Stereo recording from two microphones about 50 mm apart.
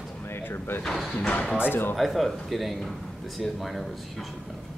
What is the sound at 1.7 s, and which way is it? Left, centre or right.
Speech, left.